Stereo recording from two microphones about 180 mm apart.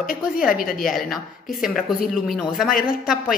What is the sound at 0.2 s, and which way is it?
Speech, 5° right (ahead or behind).